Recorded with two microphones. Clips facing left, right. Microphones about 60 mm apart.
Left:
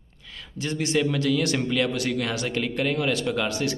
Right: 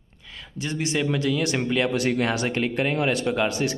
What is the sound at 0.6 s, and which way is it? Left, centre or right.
A man's voice, centre.